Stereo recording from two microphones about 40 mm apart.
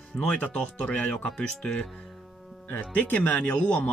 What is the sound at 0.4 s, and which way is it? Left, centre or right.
Speech, left.